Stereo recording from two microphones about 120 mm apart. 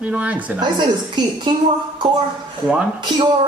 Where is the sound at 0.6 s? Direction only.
40° right (ahead or behind).